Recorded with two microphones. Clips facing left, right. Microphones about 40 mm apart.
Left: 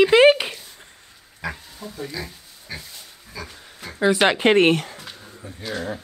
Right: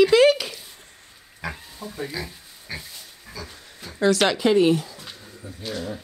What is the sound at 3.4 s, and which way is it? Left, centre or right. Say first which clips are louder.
Pig: left 3 dB; left.